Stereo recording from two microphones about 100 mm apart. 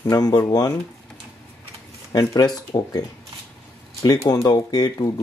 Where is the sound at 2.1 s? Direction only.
40° left (ahead or behind).